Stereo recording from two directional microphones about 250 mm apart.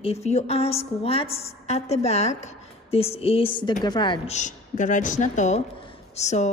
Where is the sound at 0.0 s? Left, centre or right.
Left.